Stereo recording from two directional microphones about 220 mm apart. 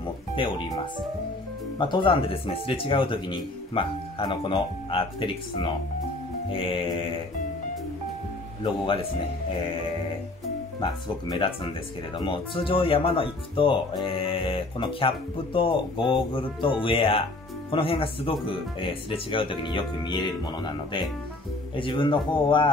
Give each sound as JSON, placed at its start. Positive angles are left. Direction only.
{"t": 0.0, "sound": "speech", "side_deg": 20}
{"t": 1.8, "sound": "speech", "side_deg": 20}
{"t": 10.8, "sound": "speech", "side_deg": 20}